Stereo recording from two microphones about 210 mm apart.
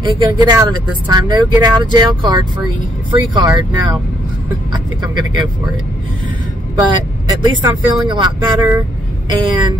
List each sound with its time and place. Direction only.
0.0 s speech: 20° right (ahead or behind)
6.9 s speech: 20° right (ahead or behind)